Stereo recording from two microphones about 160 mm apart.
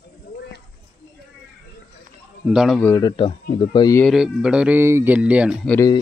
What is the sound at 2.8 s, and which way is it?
Speech, 15° left (ahead or behind).